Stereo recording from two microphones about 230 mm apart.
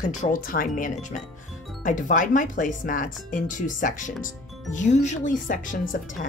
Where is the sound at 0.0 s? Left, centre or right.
Left.